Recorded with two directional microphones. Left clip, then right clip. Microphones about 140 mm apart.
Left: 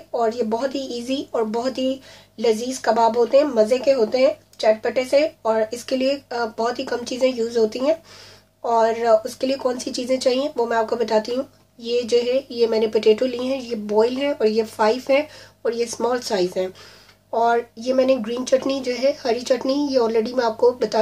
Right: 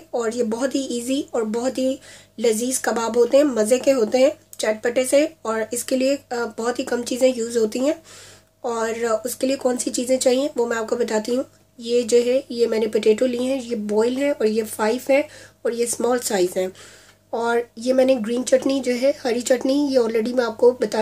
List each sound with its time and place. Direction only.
0.1 s speech: 25° right (ahead or behind)